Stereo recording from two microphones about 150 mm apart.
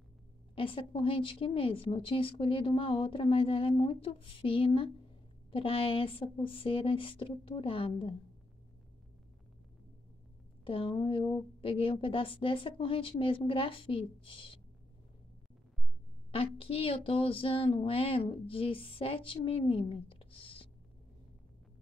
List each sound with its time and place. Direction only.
0.6 s a woman's voice: 35° left (ahead or behind)
10.6 s a woman's voice: 35° left (ahead or behind)
16.3 s a woman's voice: 40° left (ahead or behind)